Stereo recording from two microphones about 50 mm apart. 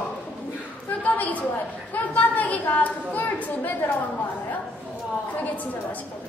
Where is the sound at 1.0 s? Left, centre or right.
Left.